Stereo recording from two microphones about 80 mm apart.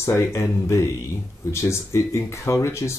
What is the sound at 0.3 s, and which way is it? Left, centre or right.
Speech, left.